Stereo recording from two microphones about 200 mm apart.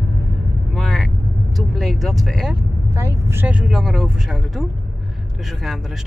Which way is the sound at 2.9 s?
15° right (ahead or behind).